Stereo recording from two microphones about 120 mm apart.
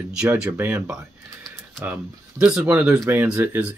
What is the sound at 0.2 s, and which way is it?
Speech, 10° right (ahead or behind).